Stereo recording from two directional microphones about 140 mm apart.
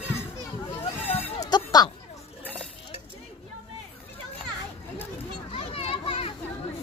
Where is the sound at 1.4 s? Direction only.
30° left (ahead or behind).